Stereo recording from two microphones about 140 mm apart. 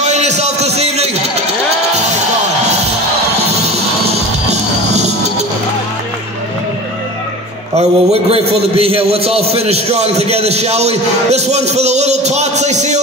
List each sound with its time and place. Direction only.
0.1 s a sound: 55° right (ahead or behind)
3.6 s music: 50° right (ahead or behind)
7.7 s a man's voice: 50° right (ahead or behind)